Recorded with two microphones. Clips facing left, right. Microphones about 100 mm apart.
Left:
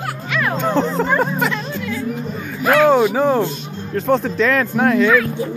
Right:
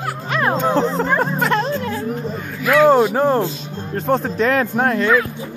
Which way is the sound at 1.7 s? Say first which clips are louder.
Right 1 dB; 40° right (ahead or behind).